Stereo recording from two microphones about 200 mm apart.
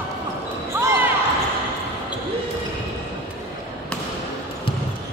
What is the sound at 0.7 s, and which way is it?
Basketball bounce, 15° right (ahead or behind).